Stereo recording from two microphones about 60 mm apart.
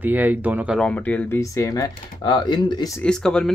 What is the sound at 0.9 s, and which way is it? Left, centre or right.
Speech, left.